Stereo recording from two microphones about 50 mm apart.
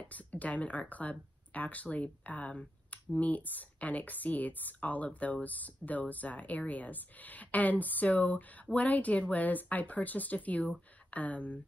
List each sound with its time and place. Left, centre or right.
0.0 s speech: left